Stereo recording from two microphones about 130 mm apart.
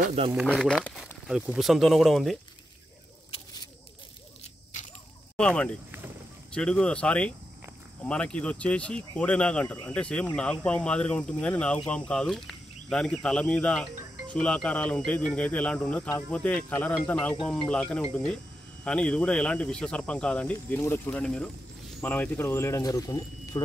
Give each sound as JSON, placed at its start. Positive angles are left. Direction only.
{"t": 0.5, "sound": "speech", "side_deg": 10}
{"t": 1.2, "sound": "speech", "side_deg": -5}
{"t": 4.7, "sound": "a sound", "side_deg": 70}
{"t": 5.4, "sound": "speech", "side_deg": 10}